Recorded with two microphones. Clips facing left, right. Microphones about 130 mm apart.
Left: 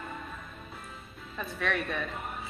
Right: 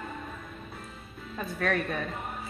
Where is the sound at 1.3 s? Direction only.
40° right (ahead or behind).